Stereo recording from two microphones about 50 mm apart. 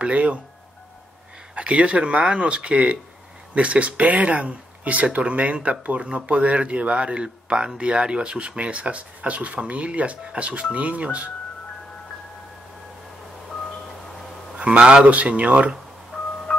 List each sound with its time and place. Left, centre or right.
0.0 s speech: right
1.5 s speech: right
14.6 s speech: right